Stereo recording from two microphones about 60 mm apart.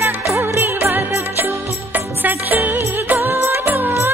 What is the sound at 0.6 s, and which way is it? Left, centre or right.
Music, right.